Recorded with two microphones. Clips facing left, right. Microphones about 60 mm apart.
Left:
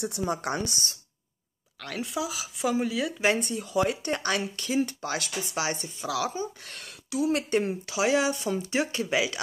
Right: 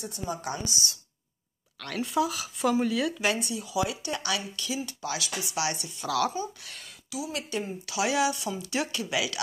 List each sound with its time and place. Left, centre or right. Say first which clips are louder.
0.0 s speech: left 5 dB; left
1.8 s speech: right 4 dB; centre
3.3 s speech: left 3 dB; left
5.9 s speech: right 4 dB; centre
6.7 s speech: left 5 dB; left
7.8 s speech: left 2 dB; left